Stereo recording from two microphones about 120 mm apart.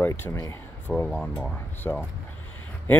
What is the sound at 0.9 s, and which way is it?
Speech, 5° left (ahead or behind).